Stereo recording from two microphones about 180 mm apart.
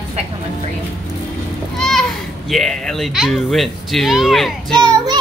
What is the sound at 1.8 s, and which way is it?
Speech, centre (ahead or behind).